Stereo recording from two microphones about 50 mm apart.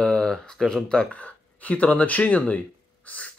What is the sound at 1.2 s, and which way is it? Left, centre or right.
Speech, left.